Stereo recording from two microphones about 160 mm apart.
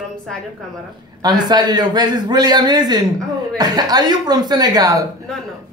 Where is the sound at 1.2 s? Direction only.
25° right (ahead or behind).